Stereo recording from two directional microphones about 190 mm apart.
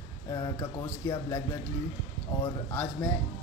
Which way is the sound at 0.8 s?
15° left (ahead or behind).